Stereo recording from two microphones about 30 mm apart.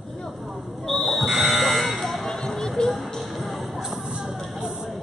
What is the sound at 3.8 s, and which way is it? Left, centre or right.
Music, centre.